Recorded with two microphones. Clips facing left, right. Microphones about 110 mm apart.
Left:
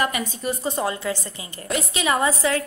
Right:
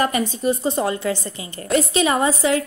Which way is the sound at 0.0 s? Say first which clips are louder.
Right 5 dB; 30° right (ahead or behind).